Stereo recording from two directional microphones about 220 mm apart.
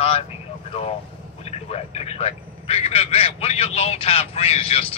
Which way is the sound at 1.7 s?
30° left (ahead or behind).